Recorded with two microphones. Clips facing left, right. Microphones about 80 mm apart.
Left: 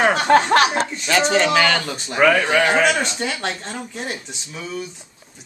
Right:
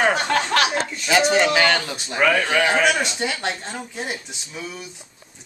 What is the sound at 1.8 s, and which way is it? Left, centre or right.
Speech, centre.